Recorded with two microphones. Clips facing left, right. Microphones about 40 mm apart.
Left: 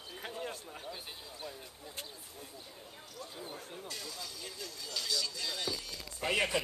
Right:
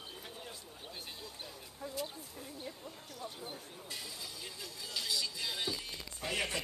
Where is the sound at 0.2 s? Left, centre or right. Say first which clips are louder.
Left 7 dB; left.